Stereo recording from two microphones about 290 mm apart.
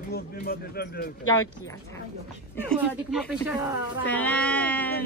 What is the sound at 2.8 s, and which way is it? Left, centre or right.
Speech, centre.